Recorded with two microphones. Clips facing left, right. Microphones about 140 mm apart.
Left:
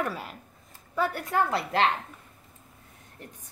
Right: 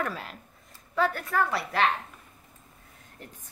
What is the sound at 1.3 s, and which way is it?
Speech, 25° left (ahead or behind).